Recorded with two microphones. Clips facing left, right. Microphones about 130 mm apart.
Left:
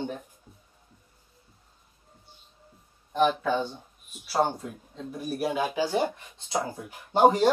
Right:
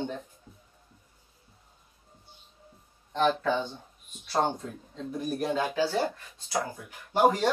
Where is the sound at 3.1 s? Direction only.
10° left (ahead or behind).